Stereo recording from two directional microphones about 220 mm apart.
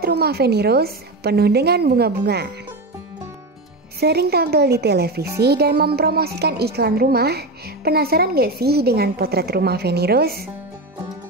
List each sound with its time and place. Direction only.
0.0 s a woman's voice: 45° right (ahead or behind)
4.0 s a woman's voice: 45° right (ahead or behind)